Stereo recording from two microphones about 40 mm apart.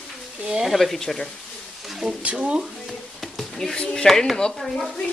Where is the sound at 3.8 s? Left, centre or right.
Centre.